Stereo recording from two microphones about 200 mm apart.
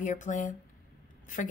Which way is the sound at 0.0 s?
40° left (ahead or behind).